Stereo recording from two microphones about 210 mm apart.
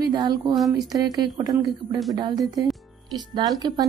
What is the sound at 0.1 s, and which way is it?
Speech, 20° right (ahead or behind).